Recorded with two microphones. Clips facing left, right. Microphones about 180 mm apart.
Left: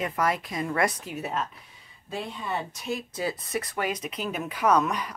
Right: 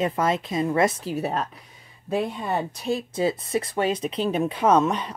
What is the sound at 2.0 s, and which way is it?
Speech, 60° right (ahead or behind).